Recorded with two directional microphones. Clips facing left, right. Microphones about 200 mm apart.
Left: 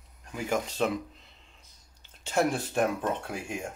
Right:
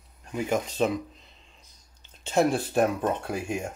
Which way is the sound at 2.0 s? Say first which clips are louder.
Right 4 dB; 20° right (ahead or behind).